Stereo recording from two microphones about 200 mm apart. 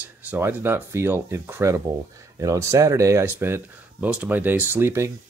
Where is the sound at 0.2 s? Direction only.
10° right (ahead or behind).